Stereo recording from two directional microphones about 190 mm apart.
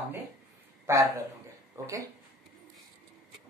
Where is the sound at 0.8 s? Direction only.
15° right (ahead or behind).